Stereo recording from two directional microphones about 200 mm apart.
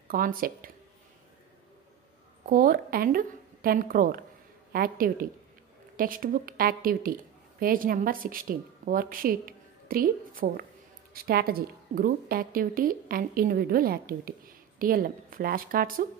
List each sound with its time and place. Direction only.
0.1 s a woman's voice: 45° right (ahead or behind)
2.4 s a woman's voice: 45° right (ahead or behind)